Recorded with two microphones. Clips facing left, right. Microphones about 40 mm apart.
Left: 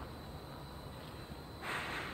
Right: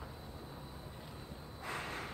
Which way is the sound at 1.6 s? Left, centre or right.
Left.